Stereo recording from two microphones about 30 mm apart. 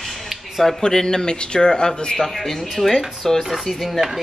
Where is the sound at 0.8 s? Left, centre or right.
Left.